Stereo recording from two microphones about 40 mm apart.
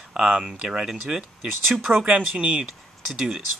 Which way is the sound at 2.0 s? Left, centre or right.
Right.